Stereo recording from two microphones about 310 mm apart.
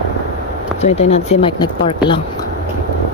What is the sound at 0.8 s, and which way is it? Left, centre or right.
Speech, centre.